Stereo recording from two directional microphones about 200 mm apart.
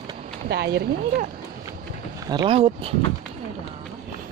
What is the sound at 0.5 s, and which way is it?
Speech, 55° right (ahead or behind).